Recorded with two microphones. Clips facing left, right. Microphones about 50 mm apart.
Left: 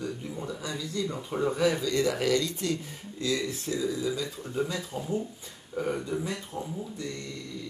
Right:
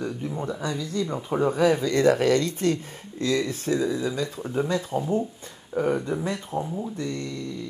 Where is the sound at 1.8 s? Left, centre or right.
Right.